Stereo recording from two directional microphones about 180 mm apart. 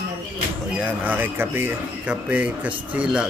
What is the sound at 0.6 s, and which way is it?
Speech, 5° right (ahead or behind).